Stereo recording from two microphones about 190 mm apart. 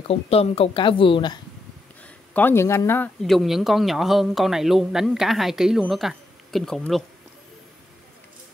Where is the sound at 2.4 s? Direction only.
10° left (ahead or behind).